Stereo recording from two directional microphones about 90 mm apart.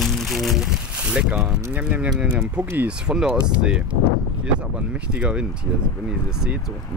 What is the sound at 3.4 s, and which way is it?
Speech, 10° right (ahead or behind).